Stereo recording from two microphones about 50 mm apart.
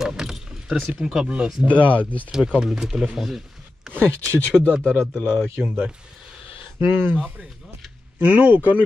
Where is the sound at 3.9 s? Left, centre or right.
Right.